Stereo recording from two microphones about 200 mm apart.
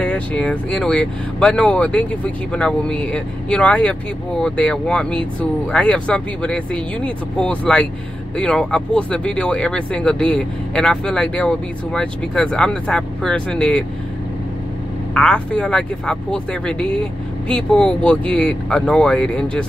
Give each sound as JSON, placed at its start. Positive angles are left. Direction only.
{"t": 0.0, "sound": "speech", "side_deg": 5}
{"t": 15.1, "sound": "speech", "side_deg": 5}